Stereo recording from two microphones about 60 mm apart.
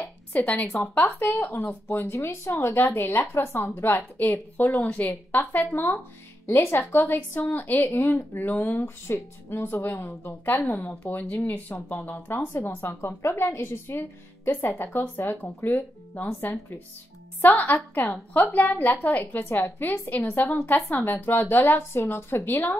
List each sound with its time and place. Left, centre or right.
0.3 s speech: left
0.7 s a woman's voice: left
6.4 s speech: left
6.8 s a woman's voice: left
11.1 s a woman's voice: left
12.1 s speech: left
17.4 s speech: left